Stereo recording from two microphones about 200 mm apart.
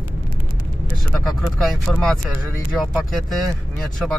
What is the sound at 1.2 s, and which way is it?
Speech, centre (ahead or behind).